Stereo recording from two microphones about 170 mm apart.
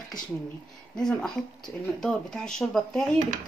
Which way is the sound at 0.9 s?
5° left (ahead or behind).